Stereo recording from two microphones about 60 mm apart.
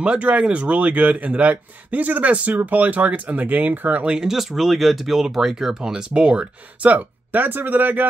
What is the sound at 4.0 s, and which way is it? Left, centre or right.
Speech, centre.